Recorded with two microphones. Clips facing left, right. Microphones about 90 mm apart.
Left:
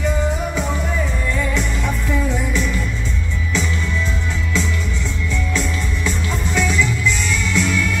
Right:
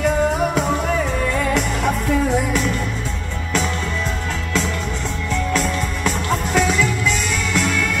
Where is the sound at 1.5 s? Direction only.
55° right (ahead or behind).